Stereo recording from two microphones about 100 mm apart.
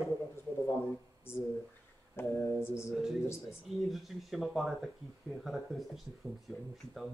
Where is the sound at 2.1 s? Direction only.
25° left (ahead or behind).